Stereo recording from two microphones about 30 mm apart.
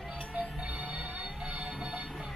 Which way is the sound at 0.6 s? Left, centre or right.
Right.